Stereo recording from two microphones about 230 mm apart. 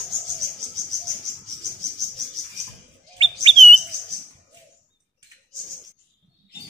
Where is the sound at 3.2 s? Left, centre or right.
Right.